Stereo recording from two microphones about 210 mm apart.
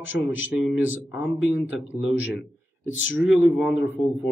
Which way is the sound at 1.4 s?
60° left (ahead or behind).